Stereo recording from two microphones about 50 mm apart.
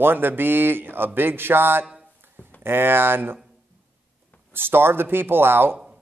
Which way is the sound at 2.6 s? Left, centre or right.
Right.